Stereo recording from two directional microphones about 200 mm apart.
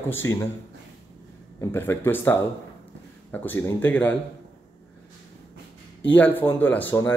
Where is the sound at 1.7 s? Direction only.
10° left (ahead or behind).